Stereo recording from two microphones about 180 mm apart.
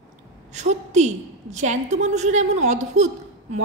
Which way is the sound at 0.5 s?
40° right (ahead or behind).